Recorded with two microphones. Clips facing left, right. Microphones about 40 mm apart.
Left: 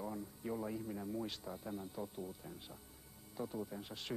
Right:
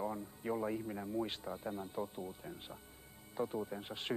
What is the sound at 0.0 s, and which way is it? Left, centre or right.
Speech, right.